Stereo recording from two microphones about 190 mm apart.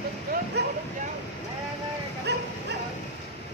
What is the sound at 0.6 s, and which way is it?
Speech, 60° right (ahead or behind).